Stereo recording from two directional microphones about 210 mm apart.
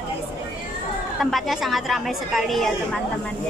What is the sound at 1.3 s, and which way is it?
A woman's voice, centre (ahead or behind).